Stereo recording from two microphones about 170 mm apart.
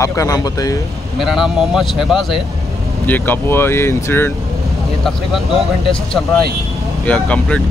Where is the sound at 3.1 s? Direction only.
15° left (ahead or behind).